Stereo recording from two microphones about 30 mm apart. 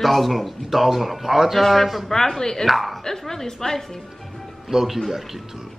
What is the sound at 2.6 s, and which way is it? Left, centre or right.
Speech, centre.